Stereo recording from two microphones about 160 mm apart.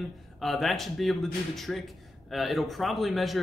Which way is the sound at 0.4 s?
Centre (ahead or behind).